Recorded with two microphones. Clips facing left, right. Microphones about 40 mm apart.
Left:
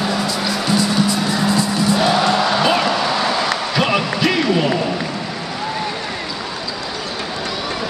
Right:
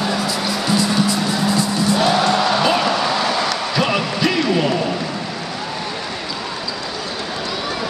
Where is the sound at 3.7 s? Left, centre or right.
Centre.